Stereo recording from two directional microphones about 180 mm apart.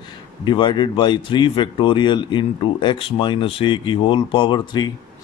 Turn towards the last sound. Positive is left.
turn(degrees=25)  # may be behind; listen again after turning